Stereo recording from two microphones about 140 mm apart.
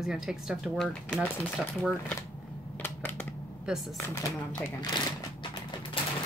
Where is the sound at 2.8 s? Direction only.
15° left (ahead or behind).